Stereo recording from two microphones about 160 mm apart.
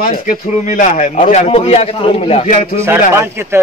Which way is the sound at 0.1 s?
50° left (ahead or behind).